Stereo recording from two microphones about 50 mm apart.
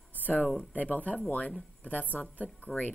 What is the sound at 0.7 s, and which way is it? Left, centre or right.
A woman's voice, left.